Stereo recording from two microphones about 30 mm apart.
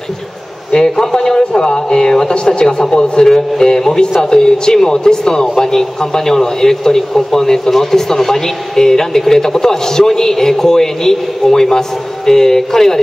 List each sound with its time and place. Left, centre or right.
0.7 s a man's voice: left